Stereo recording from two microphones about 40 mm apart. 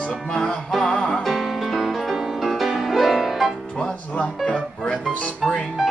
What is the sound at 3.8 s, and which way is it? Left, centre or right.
Speech, left.